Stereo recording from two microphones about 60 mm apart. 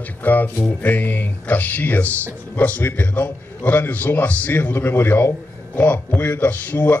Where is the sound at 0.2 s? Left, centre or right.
Left.